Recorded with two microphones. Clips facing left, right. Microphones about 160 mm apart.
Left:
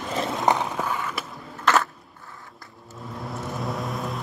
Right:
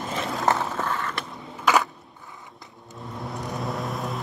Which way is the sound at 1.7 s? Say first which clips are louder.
Even; 10° right (ahead or behind).